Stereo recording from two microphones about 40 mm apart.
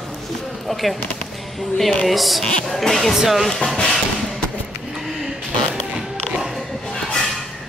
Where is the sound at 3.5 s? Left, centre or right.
Centre.